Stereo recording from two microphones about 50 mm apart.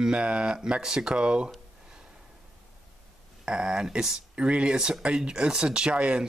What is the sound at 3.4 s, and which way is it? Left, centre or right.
Speech, centre.